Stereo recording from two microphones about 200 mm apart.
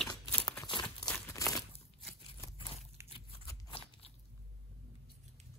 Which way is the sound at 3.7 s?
25° left (ahead or behind).